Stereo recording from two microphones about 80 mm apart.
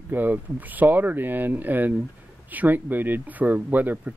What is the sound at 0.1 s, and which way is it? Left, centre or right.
Speech, right.